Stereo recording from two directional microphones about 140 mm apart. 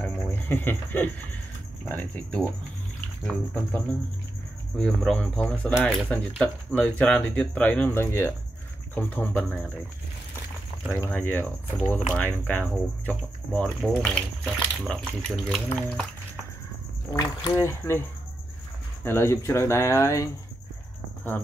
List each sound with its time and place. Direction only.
0.0 s cricket: 15° left (ahead or behind)
1.9 s speech: 10° left (ahead or behind)
4.7 s speech: 5° left (ahead or behind)
10.9 s speech: 15° left (ahead or behind)
17.1 s speech: 15° left (ahead or behind)
19.0 s speech: 20° left (ahead or behind)